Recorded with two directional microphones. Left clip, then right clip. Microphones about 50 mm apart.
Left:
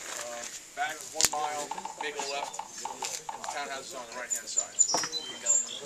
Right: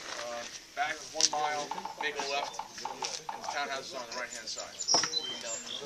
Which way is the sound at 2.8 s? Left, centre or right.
Centre.